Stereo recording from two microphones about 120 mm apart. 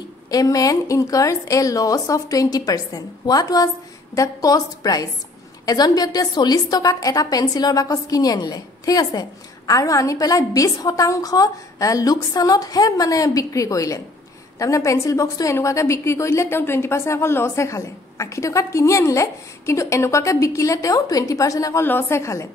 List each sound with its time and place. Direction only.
0.3 s a woman's voice: 30° left (ahead or behind)